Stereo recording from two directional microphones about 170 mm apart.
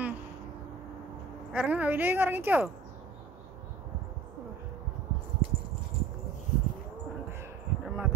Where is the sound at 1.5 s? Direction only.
10° right (ahead or behind).